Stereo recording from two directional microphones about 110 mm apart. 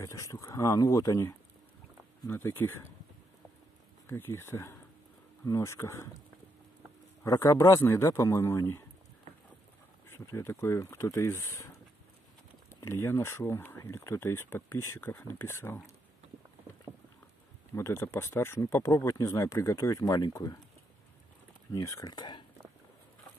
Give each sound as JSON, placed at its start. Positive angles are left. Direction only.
{"t": 0.0, "sound": "speech", "side_deg": 30}
{"t": 4.1, "sound": "speech", "side_deg": 25}
{"t": 7.2, "sound": "speech", "side_deg": 25}
{"t": 10.0, "sound": "speech", "side_deg": 25}
{"t": 12.8, "sound": "speech", "side_deg": 25}
{"t": 17.7, "sound": "speech", "side_deg": 25}
{"t": 21.7, "sound": "speech", "side_deg": 30}